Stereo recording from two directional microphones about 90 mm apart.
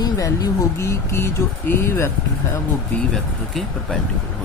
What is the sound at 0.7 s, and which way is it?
Speech, 30° left (ahead or behind).